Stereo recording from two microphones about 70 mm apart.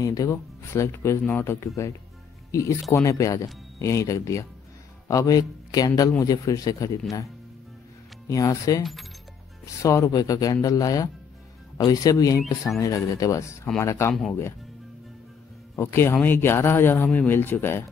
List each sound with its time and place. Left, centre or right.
0.0 s a man's voice: left
0.3 s a man's voice: left
8.3 s a man's voice: left
15.7 s a man's voice: left